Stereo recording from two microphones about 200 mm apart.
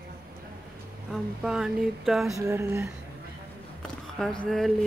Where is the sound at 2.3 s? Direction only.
15° right (ahead or behind).